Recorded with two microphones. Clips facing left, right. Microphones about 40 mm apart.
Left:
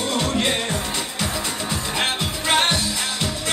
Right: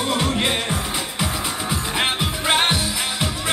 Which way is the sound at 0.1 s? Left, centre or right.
Centre.